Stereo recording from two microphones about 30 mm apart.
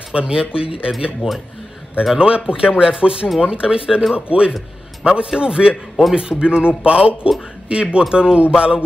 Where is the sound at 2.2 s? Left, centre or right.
Right.